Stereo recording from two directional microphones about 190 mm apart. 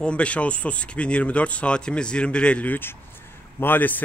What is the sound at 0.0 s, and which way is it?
Speech, 5° left (ahead or behind).